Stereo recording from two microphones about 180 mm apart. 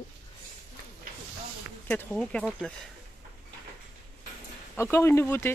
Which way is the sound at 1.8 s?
5° left (ahead or behind).